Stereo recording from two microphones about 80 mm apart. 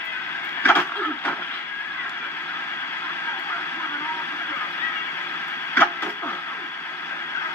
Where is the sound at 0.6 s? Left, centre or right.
Left.